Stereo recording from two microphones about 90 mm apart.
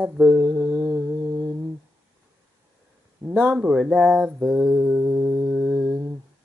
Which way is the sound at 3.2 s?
30° right (ahead or behind).